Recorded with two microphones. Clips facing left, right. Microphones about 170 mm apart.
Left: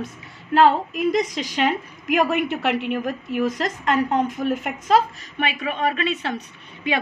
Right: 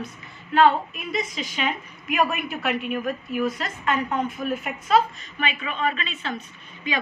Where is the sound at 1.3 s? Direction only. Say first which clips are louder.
Left 6 dB; 90° left.